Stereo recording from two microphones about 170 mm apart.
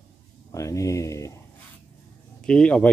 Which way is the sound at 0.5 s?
20° left (ahead or behind).